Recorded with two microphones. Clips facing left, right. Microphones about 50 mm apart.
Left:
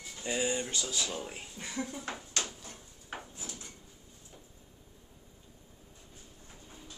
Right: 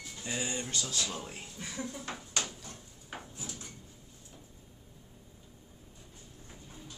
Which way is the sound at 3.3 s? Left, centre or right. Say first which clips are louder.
Right 1 dB; left.